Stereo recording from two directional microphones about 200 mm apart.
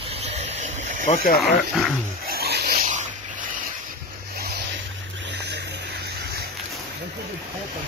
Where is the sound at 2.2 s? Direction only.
50° right (ahead or behind).